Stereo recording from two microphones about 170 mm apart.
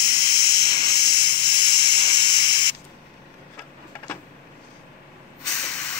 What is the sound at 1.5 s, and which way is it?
Hiss, 25° left (ahead or behind).